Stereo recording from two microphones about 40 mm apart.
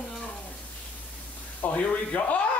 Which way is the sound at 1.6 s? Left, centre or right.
Left.